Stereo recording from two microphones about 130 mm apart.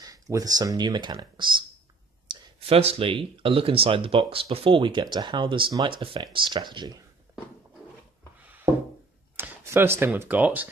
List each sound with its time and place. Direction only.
0.0 s speech: 30° right (ahead or behind)
8.4 s a sound: 10° right (ahead or behind)
9.4 s speech: 15° right (ahead or behind)